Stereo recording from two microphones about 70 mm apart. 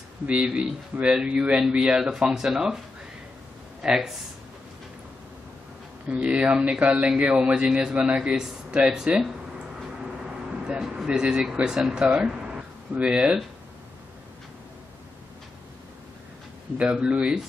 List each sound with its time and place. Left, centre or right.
0.3 s speech: centre
0.9 s speech: right; by 2.8 s centre
3.8 s speech: centre
6.0 s speech: centre
10.0 s vehicle: centre
10.8 s speech: centre
16.7 s speech: centre